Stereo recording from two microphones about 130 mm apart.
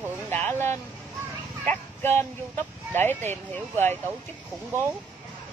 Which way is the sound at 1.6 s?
15° left (ahead or behind).